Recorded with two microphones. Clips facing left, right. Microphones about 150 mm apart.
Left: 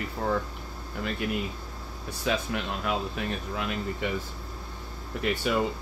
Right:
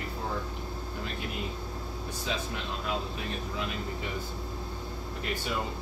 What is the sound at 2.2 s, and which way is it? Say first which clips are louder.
Speech: left 7 dB; 65° left (ahead or behind).